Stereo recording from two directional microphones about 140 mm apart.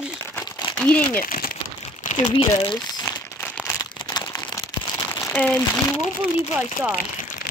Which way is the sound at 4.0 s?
30° left (ahead or behind).